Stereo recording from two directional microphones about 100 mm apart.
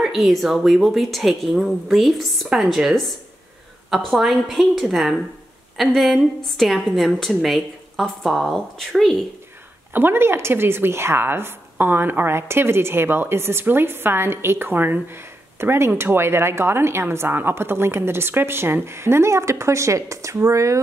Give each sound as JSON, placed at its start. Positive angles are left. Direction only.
{"t": 0.0, "sound": "a woman's voice", "side_deg": 0}
{"t": 9.9, "sound": "a woman's voice", "side_deg": -20}